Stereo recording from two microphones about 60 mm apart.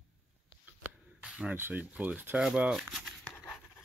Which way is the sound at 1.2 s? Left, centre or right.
Right.